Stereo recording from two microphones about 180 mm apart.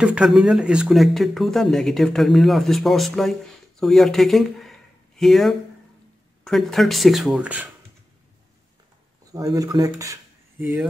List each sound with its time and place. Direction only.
0.0 s speech: 5° right (ahead or behind)
9.3 s speech: 20° right (ahead or behind)